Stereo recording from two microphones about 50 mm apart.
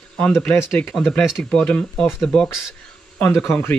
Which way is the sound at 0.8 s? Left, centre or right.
Centre.